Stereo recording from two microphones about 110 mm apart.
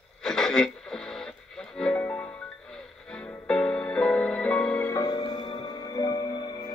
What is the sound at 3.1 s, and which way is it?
Music, 10° left (ahead or behind).